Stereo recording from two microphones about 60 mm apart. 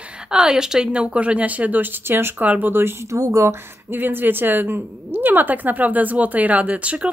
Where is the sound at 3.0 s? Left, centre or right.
Right.